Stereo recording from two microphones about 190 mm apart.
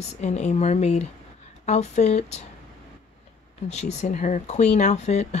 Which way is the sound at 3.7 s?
35° left (ahead or behind).